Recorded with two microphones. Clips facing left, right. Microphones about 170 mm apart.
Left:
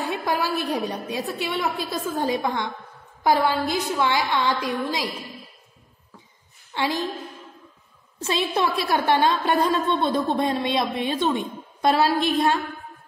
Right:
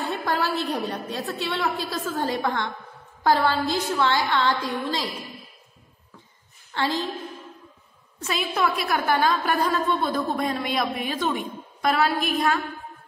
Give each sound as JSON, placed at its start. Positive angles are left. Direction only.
{"t": 0.0, "sound": "a woman's voice", "side_deg": 15}
{"t": 6.7, "sound": "a woman's voice", "side_deg": 15}
{"t": 8.2, "sound": "a woman's voice", "side_deg": 30}